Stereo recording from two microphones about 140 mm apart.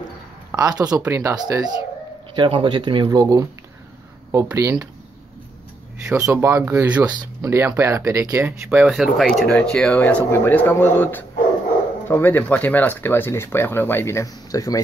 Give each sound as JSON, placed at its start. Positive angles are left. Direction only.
{"t": 0.5, "sound": "speech", "side_deg": -25}
{"t": 2.3, "sound": "speech", "side_deg": -35}
{"t": 6.0, "sound": "speech", "side_deg": -5}
{"t": 6.3, "sound": "speech", "side_deg": -20}
{"t": 8.6, "sound": "speech", "side_deg": -5}